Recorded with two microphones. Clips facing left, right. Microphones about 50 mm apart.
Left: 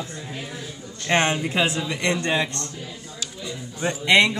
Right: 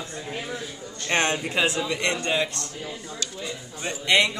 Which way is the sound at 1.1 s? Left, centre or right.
Left.